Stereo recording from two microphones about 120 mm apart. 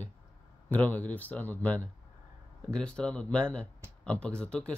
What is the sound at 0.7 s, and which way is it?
Speech, 10° left (ahead or behind).